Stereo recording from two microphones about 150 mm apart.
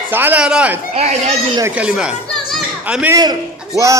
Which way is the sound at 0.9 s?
50° right (ahead or behind).